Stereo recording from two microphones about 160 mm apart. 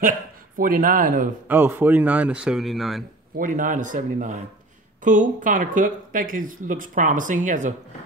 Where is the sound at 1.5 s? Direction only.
10° right (ahead or behind).